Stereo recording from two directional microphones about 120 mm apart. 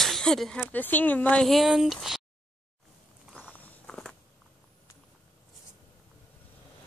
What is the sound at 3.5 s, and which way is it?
Walk, 10° left (ahead or behind).